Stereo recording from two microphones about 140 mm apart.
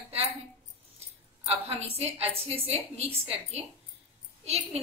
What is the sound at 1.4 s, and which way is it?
A woman's voice, 45° right (ahead or behind).